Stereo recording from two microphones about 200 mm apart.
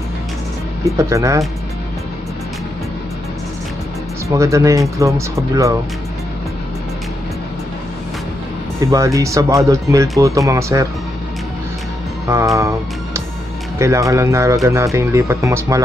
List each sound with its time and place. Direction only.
0.8 s speech: 15° right (ahead or behind)
4.4 s speech: 15° right (ahead or behind)
8.9 s speech: 15° right (ahead or behind)
12.5 s music: 15° right (ahead or behind)
13.7 s speech: 15° right (ahead or behind)